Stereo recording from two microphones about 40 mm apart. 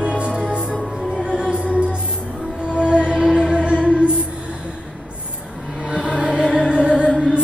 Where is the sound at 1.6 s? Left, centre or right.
Right.